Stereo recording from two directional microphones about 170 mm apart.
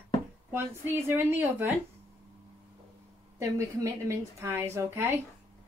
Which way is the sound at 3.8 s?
15° right (ahead or behind).